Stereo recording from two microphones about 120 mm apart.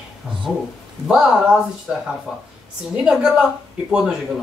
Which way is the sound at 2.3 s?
5° right (ahead or behind).